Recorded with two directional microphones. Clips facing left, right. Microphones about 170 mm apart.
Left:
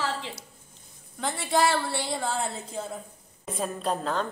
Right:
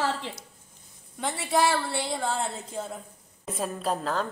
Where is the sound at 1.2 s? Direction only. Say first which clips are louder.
Even; 5° right (ahead or behind).